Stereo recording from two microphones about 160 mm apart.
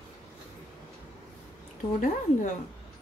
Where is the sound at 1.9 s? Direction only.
55° left (ahead or behind).